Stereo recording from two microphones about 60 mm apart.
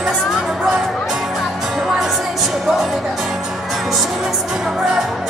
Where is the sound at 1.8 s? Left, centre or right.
Centre.